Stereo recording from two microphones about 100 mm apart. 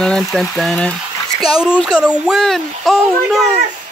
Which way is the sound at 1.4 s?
40° right (ahead or behind).